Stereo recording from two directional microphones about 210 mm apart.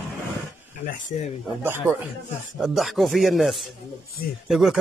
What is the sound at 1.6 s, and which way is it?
Speech, 10° right (ahead or behind).